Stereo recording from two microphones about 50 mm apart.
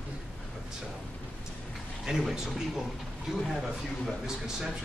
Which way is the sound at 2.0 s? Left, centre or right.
Centre.